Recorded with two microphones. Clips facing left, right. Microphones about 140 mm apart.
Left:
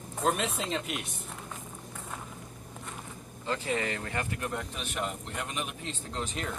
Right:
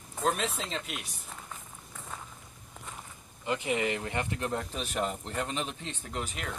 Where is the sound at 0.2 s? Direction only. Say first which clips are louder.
Left 1 dB; centre (ahead or behind).